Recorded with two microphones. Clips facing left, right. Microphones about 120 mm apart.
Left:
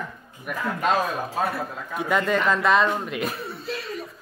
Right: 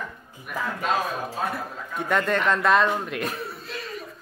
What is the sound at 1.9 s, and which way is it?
Speech, centre (ahead or behind).